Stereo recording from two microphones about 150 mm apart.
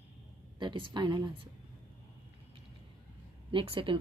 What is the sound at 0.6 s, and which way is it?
Speech, 30° right (ahead or behind).